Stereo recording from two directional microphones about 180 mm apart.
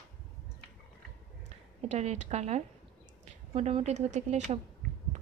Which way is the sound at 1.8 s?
40° right (ahead or behind).